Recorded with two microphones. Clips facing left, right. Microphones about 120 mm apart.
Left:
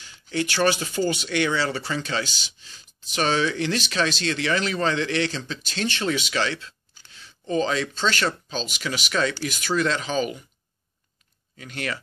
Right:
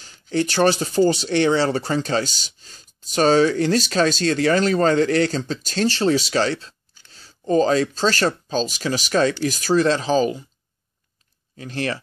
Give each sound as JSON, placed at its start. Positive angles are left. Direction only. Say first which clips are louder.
{"t": 0.0, "sound": "speech", "louder": "right 5 dB", "side_deg": -40}
{"t": 11.5, "sound": "speech", "louder": "right 6 dB", "side_deg": -35}